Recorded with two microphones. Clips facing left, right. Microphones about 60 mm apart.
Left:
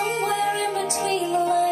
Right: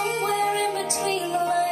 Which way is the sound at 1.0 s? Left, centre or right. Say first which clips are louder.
Left 2 dB; right.